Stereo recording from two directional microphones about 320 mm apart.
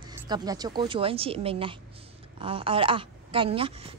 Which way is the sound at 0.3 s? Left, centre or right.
Centre.